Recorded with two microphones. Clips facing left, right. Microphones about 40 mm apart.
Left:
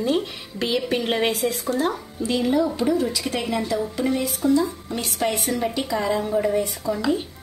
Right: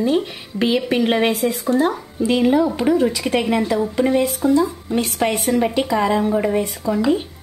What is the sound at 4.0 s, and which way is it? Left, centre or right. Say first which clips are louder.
Speech: right 8 dB; right.